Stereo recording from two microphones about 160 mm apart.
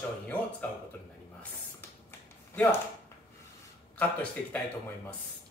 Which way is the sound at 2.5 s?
10° left (ahead or behind).